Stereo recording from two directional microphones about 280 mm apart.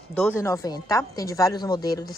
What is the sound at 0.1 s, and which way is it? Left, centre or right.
A woman's voice, centre.